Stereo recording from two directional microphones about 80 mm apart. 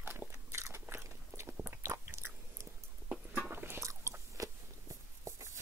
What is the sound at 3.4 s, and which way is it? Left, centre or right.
Biting, right.